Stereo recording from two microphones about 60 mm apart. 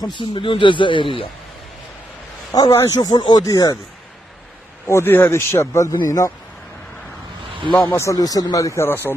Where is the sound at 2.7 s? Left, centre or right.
Left.